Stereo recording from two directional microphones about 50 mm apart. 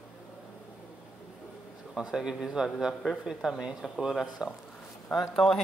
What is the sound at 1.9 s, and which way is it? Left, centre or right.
Speech, centre.